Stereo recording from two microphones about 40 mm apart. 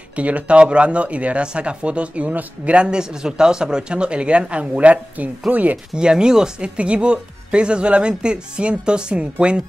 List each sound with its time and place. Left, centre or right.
0.1 s speech: right
5.9 s speech: right
6.8 s speech: right